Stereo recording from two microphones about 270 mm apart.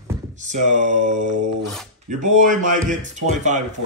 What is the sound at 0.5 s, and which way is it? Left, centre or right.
Speech, right.